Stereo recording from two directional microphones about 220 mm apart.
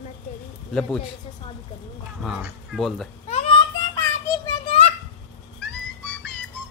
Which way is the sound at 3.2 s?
25° left (ahead or behind).